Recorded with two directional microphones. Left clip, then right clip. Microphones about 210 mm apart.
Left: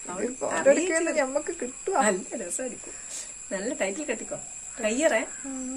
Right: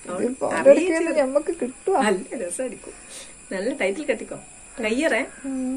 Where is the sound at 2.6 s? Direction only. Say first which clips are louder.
Right 4 dB; 30° left (ahead or behind).